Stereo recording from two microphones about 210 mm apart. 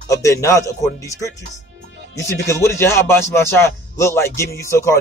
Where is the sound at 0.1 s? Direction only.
15° left (ahead or behind).